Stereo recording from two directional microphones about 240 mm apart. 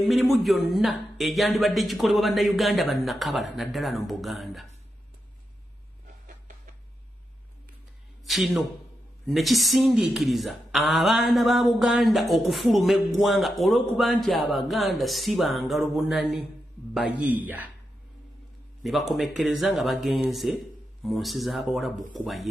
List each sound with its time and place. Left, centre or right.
0.0 s music: centre
6.2 s a sound: right
8.3 s music: centre
16.9 s a man's voice: centre
18.8 s music: centre